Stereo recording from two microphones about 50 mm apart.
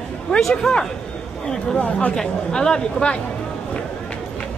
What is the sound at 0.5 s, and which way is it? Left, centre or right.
Speech, centre.